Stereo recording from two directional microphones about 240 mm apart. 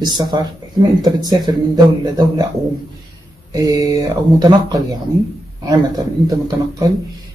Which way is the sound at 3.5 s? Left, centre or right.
Centre.